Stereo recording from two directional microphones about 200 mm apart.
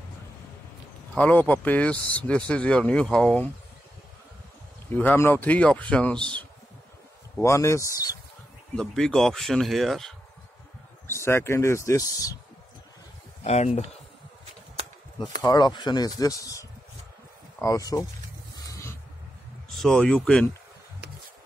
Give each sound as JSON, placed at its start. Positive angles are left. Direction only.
{"t": 1.1, "sound": "speech", "side_deg": 5}
{"t": 4.9, "sound": "speech", "side_deg": 10}
{"t": 7.3, "sound": "speech", "side_deg": 15}
{"t": 8.7, "sound": "speech", "side_deg": 5}
{"t": 11.2, "sound": "speech", "side_deg": 15}
{"t": 13.4, "sound": "speech", "side_deg": 35}
{"t": 15.4, "sound": "speech", "side_deg": 20}
{"t": 18.7, "sound": "a sound", "side_deg": 15}
{"t": 19.8, "sound": "speech", "side_deg": 5}